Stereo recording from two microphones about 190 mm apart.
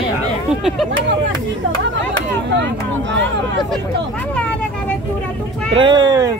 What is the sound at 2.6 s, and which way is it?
Speech, 70° right (ahead or behind).